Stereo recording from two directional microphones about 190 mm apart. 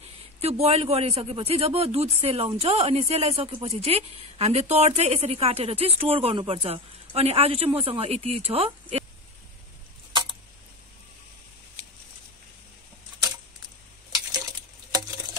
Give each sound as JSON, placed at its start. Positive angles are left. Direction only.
{"t": 0.4, "sound": "speech", "side_deg": -35}